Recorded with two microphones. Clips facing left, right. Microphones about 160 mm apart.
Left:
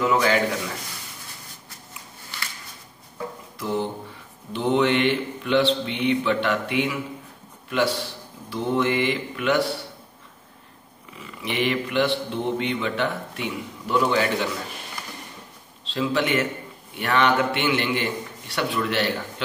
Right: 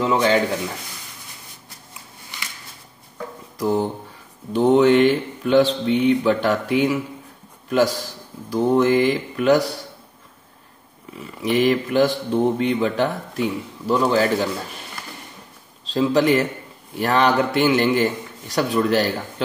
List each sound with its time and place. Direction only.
0.0 s a man's voice: 30° right (ahead or behind)
3.5 s speech: 40° right (ahead or behind)
11.1 s speech: 40° right (ahead or behind)
15.8 s a man's voice: 40° right (ahead or behind)